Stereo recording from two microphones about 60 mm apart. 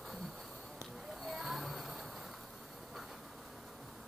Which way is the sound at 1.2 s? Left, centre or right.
Centre.